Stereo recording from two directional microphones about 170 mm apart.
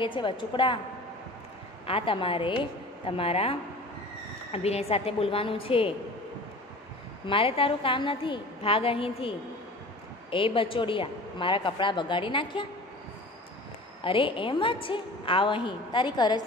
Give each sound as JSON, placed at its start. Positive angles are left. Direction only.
{"t": 0.0, "sound": "a woman's voice", "side_deg": 30}
{"t": 1.9, "sound": "a woman's voice", "side_deg": 30}
{"t": 7.2, "sound": "a woman's voice", "side_deg": 35}
{"t": 10.3, "sound": "a woman's voice", "side_deg": 30}
{"t": 14.0, "sound": "a woman's voice", "side_deg": 30}